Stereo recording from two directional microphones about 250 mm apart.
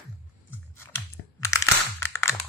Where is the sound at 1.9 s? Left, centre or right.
Centre.